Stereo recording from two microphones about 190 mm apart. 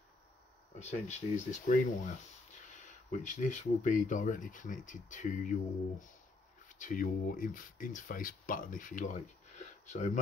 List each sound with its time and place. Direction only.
0.7 s speech: 35° left (ahead or behind)